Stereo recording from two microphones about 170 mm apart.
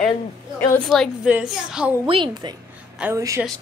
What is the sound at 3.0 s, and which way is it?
Speech, 15° right (ahead or behind).